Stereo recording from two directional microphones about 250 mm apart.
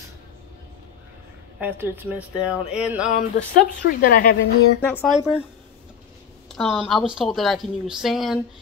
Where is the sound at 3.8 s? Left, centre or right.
Left.